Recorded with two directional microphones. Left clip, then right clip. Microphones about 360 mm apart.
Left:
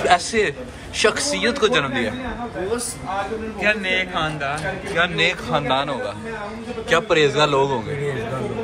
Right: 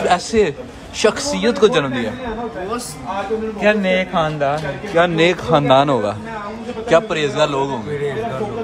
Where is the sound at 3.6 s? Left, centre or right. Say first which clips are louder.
Right 4 dB; right.